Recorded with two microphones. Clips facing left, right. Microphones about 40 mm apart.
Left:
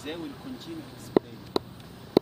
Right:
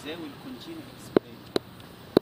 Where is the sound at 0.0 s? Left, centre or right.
Centre.